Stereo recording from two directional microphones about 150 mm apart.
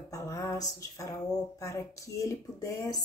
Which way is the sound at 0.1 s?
20° left (ahead or behind).